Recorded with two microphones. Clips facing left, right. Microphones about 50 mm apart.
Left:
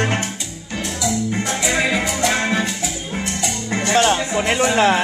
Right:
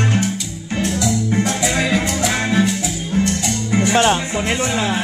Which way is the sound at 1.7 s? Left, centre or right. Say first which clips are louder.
Left 1 dB; centre.